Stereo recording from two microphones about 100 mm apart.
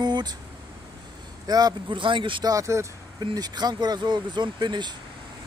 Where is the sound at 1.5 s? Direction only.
40° right (ahead or behind).